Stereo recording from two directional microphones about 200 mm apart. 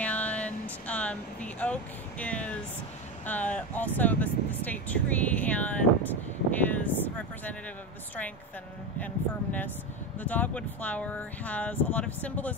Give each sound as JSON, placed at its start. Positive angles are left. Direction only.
{"t": 0.0, "sound": "vehicle", "side_deg": 5}
{"t": 3.3, "sound": "speech", "side_deg": 5}
{"t": 9.0, "sound": "speech", "side_deg": 10}